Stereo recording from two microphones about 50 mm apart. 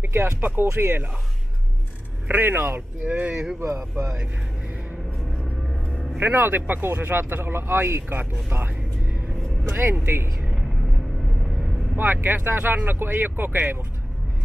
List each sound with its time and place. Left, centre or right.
0.0 s speech: right
2.2 s speech: right
3.5 s speech: right
6.1 s speech: right
8.5 s music: right
9.7 s speech: right
12.0 s speech: right